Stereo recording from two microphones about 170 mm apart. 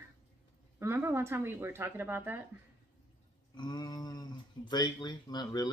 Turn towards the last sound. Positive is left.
turn(degrees=25)  # may be behind; listen again after turning